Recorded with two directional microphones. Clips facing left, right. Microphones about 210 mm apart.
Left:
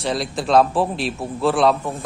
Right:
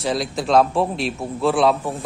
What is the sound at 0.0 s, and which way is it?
Speech, centre (ahead or behind).